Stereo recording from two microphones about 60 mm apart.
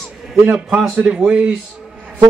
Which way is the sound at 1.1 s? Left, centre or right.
Centre.